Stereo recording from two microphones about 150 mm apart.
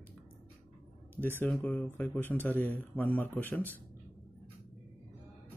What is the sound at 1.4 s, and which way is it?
Speech, 10° left (ahead or behind).